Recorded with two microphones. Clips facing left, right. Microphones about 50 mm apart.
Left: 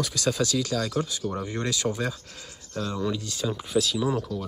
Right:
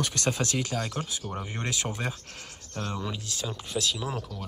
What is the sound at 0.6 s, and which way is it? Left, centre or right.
Speech, right.